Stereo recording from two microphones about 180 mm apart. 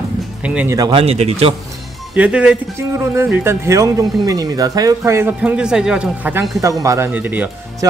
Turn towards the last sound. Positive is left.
turn(degrees=-10)  # may be behind; listen again after turning